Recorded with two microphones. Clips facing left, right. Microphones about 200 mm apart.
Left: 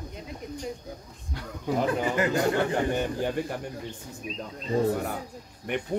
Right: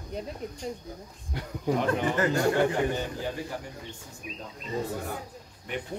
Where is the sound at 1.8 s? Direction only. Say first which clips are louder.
Left 2 dB; 15° left (ahead or behind).